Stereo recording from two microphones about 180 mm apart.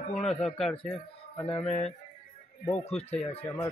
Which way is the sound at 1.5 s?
35° left (ahead or behind).